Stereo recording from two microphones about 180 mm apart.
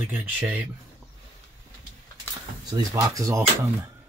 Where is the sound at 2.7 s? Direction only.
20° right (ahead or behind).